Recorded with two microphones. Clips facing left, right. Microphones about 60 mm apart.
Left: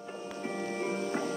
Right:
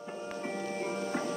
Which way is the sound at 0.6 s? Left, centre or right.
Left.